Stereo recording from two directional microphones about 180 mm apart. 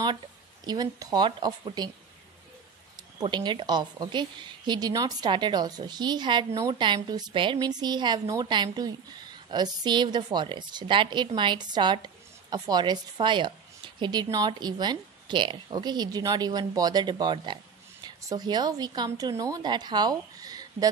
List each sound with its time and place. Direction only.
0.7 s a woman's voice: 20° right (ahead or behind)
3.2 s a woman's voice: 25° right (ahead or behind)